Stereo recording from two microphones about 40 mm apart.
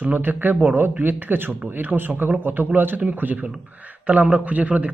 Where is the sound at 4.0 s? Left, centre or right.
Right.